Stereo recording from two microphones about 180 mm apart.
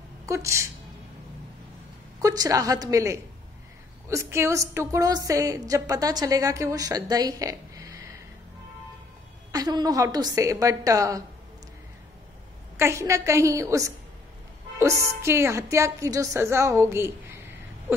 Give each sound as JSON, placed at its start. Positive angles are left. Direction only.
{"t": 0.3, "sound": "a woman's voice", "side_deg": -15}
{"t": 2.2, "sound": "a woman's voice", "side_deg": -20}
{"t": 9.5, "sound": "a woman's voice", "side_deg": -20}
{"t": 12.7, "sound": "a woman's voice", "side_deg": -15}